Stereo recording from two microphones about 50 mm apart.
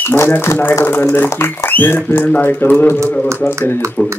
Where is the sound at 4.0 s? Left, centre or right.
Left.